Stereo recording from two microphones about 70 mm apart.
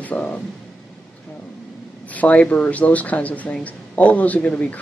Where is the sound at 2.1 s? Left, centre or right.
Left.